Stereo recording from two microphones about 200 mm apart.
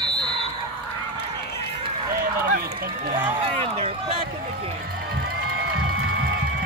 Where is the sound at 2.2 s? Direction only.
45° right (ahead or behind).